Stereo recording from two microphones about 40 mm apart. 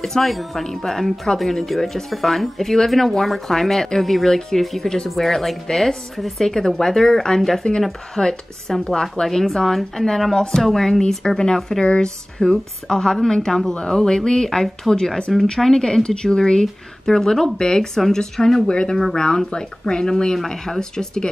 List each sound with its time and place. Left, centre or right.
0.0 s speech: centre
5.1 s speech: centre
7.7 s speech: left
8.2 s speech: centre
12.4 s speech: centre
18.7 s speech: left